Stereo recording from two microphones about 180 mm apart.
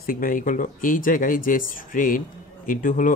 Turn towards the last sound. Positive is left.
turn(degrees=50)  # may be behind; listen again after turning